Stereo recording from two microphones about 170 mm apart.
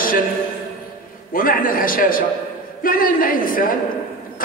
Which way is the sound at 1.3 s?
55° left (ahead or behind).